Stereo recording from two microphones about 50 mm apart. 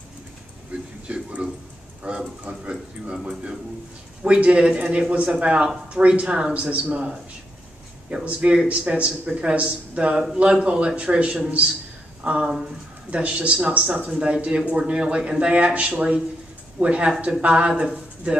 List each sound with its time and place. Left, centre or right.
0.7 s a sound: right
1.0 s speech: right
4.2 s speech: right
8.1 s speech: right